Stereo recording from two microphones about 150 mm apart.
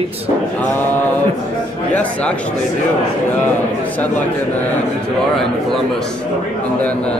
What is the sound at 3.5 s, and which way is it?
Speech, 10° left (ahead or behind).